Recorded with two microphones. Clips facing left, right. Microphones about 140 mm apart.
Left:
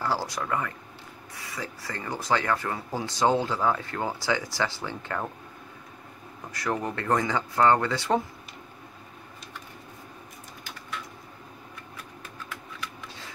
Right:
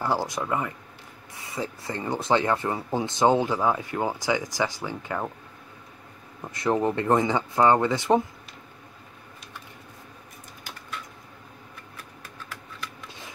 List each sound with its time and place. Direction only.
0.0 s speech: 20° right (ahead or behind)
6.5 s speech: 25° right (ahead or behind)